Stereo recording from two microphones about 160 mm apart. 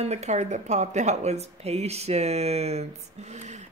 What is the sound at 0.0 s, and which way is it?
Speech, 45° right (ahead or behind).